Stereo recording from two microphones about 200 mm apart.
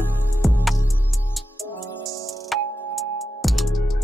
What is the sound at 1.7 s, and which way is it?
Music, 15° left (ahead or behind).